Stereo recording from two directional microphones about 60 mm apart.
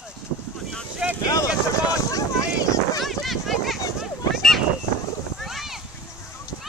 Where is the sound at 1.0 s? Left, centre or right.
Centre.